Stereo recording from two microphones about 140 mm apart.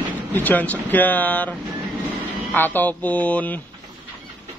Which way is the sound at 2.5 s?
15° left (ahead or behind).